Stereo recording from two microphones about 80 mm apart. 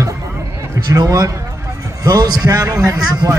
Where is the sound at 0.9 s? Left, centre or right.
Right.